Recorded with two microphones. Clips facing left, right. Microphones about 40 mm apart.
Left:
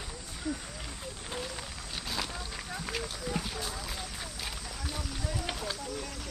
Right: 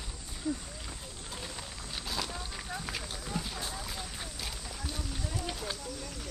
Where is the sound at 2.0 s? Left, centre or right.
Centre.